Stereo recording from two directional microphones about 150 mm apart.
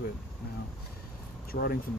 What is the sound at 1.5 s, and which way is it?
Speech, 90° left.